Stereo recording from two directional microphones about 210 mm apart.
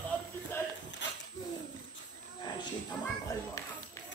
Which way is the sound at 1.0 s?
60° left (ahead or behind).